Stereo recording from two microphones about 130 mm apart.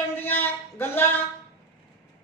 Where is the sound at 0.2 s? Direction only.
15° left (ahead or behind).